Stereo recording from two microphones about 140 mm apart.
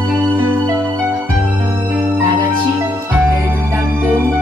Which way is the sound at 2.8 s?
15° right (ahead or behind).